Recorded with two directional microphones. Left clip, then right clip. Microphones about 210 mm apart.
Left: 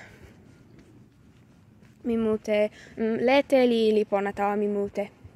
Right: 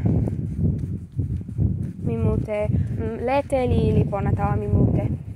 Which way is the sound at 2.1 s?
35° left (ahead or behind).